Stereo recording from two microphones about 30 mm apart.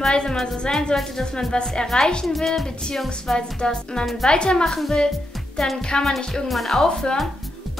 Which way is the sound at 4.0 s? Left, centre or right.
Centre.